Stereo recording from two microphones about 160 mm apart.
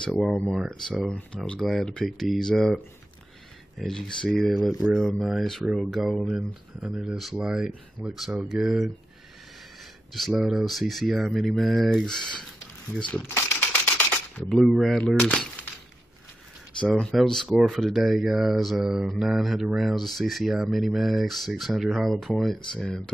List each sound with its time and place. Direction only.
0.1 s speech: centre (ahead or behind)
10.1 s speech: centre (ahead or behind)
12.2 s speech: 30° left (ahead or behind)
13.3 s camera: 15° left (ahead or behind)
17.0 s speech: centre (ahead or behind)